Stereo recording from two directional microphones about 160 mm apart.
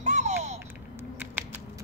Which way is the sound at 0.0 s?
45° right (ahead or behind).